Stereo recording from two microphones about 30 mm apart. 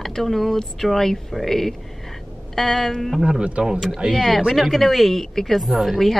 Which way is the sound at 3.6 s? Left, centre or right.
Right.